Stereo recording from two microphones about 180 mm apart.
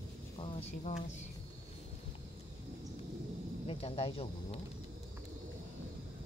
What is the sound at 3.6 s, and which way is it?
Speech, 30° left (ahead or behind).